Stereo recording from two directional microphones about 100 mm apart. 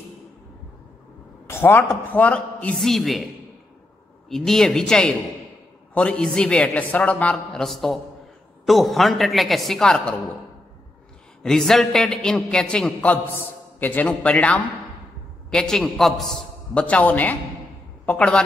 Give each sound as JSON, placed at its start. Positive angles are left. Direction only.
{"t": 1.5, "sound": "a man's voice", "side_deg": 20}
{"t": 2.8, "sound": "a woman's voice", "side_deg": 0}
{"t": 4.3, "sound": "a woman's voice", "side_deg": 5}
{"t": 11.4, "sound": "a man's voice", "side_deg": 5}